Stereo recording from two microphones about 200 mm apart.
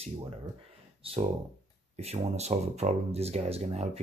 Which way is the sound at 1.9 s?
30° right (ahead or behind).